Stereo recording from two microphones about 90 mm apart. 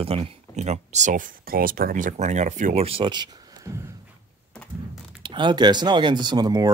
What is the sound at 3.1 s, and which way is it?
Speech, 55° right (ahead or behind).